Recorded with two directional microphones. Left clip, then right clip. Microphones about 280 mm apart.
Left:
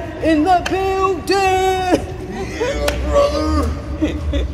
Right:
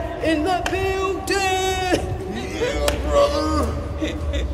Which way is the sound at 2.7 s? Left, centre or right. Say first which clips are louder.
Left 3 dB; centre.